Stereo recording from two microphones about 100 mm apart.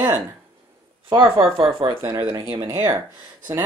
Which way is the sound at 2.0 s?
25° right (ahead or behind).